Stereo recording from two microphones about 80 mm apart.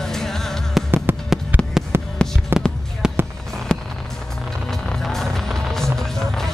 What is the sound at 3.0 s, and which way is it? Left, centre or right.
Fireworks, centre.